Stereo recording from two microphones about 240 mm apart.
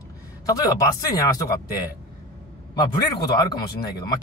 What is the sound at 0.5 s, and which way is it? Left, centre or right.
Speech, centre.